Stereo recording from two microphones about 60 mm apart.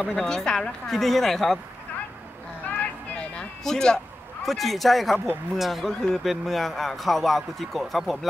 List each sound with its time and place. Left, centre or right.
0.0 s a man's voice: centre
2.8 s vehicle: centre
3.6 s a man's voice: centre